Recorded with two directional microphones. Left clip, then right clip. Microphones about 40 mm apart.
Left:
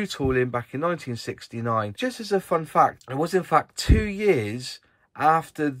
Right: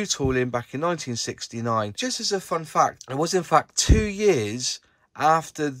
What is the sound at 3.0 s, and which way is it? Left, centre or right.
Speech, right.